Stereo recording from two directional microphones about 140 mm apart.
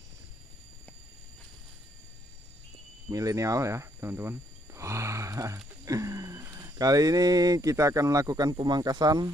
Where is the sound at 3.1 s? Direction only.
25° right (ahead or behind).